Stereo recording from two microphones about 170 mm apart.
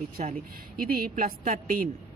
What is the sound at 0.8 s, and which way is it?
A woman's voice, 60° right (ahead or behind).